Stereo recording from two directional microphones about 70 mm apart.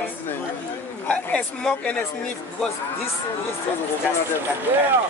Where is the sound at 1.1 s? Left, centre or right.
Centre.